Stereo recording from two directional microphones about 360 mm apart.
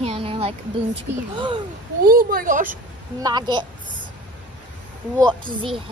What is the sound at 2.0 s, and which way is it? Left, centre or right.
Speech, right.